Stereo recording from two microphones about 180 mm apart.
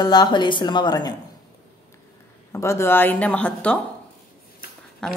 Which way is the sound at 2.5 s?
15° left (ahead or behind).